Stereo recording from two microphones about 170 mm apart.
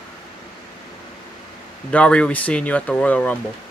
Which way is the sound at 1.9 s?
5° left (ahead or behind).